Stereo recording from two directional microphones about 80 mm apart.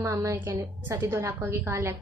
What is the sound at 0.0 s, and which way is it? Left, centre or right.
Speech, right.